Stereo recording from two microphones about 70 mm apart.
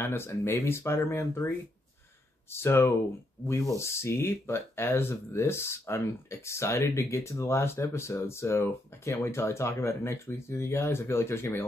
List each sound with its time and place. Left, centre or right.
0.0 s speech: left
2.5 s speech: left